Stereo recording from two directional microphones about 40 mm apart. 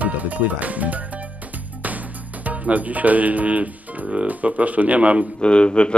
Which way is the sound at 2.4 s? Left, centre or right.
Right.